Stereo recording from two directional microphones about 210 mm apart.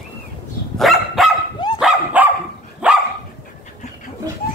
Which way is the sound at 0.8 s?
Centre (ahead or behind).